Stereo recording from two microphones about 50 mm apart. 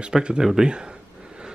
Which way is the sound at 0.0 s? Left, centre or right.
Centre.